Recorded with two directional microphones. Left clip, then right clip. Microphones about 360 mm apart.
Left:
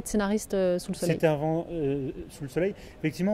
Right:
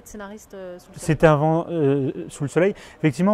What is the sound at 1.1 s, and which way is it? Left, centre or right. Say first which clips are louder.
Speech: right 9 dB; right.